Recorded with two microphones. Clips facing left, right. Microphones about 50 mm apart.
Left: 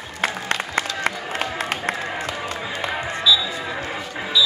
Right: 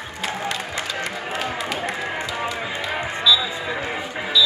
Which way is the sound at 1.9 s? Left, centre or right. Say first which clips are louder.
Right 1 dB; right.